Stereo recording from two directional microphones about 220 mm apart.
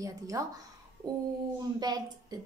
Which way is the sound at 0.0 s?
15° right (ahead or behind).